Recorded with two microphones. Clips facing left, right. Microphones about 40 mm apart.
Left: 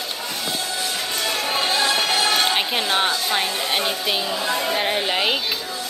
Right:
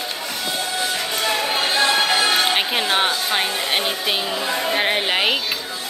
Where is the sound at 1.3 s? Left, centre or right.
Centre.